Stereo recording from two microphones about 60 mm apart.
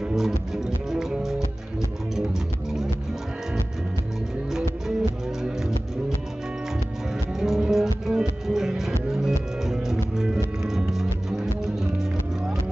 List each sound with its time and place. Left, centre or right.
0.1 s music: centre
4.5 s music: centre
7.3 s music: centre